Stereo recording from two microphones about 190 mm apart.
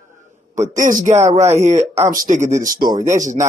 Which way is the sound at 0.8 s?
45° right (ahead or behind).